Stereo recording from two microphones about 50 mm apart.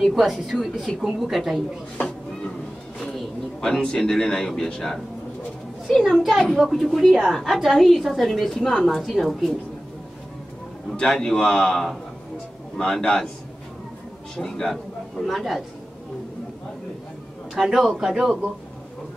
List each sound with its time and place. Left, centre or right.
0.0 s a woman's voice: centre
2.0 s a sound: left
3.0 s a woman's voice: centre
8.3 s a woman's voice: centre
11.0 s a man's voice: centre
14.3 s speech: centre
17.8 s a man's voice: centre